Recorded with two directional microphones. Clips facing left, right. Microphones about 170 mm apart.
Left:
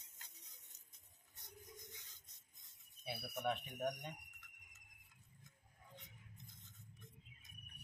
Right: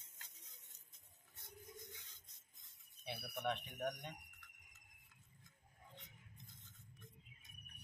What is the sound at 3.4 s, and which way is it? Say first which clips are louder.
Speech: left 1 dB; 10° left (ahead or behind).